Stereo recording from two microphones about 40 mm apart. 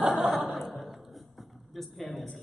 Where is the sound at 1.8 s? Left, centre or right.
Centre.